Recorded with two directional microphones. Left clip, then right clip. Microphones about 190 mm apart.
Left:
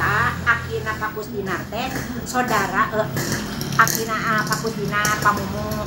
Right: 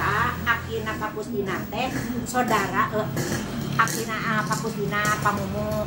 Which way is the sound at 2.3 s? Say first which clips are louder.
Left 3 dB; 5° right (ahead or behind).